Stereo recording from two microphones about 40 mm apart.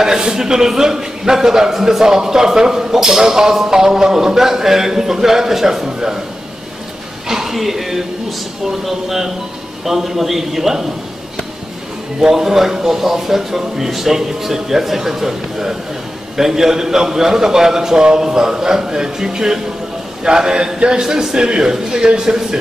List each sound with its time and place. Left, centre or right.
0.0 s a man's voice: centre
7.2 s a man's voice: centre
12.2 s a man's voice: centre